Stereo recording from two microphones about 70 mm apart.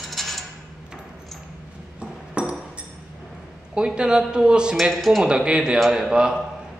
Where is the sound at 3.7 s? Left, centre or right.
Centre.